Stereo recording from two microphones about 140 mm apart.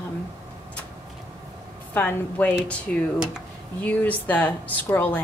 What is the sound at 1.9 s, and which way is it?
Speech, 15° left (ahead or behind).